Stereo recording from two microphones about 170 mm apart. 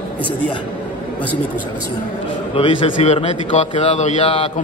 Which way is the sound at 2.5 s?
30° left (ahead or behind).